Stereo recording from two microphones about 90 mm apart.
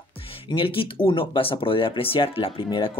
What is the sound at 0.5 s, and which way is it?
Speech, 75° left (ahead or behind).